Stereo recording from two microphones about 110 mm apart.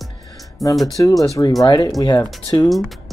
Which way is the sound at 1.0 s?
30° left (ahead or behind).